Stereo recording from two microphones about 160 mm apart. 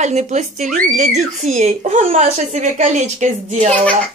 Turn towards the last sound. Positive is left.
turn(degrees=-45)  # may be behind; listen again after turning